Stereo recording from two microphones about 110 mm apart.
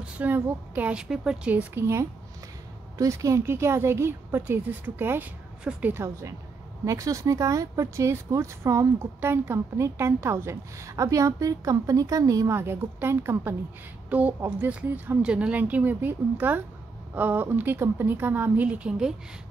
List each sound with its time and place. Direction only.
0.0 s speech: 15° right (ahead or behind)
6.8 s speech: 30° right (ahead or behind); by 19.1 s 5° right (ahead or behind)